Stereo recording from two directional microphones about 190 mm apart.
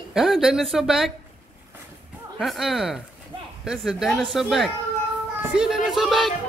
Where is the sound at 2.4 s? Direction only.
Centre (ahead or behind).